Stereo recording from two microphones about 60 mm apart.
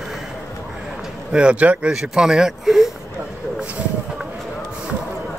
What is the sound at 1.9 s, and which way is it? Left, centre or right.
Speech, centre.